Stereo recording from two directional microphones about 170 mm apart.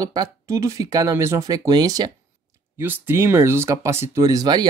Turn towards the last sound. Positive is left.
turn(degrees=-25)  # may be behind; listen again after turning